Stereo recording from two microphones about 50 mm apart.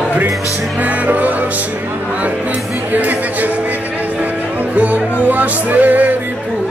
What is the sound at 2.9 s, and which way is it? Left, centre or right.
Speech, right.